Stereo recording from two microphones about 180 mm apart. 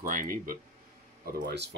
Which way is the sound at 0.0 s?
50° right (ahead or behind).